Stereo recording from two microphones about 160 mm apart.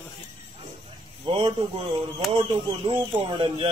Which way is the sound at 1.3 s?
35° right (ahead or behind).